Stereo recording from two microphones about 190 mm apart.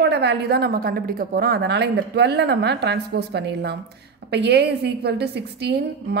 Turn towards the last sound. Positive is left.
turn(degrees=-60)  # may be behind; listen again after turning